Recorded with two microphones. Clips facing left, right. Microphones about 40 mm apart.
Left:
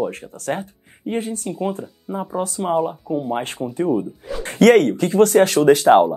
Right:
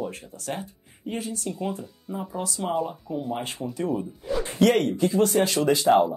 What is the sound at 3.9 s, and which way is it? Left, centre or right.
Speech, centre.